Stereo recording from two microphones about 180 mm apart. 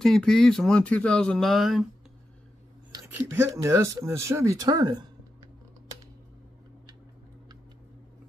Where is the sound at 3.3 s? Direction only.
15° right (ahead or behind).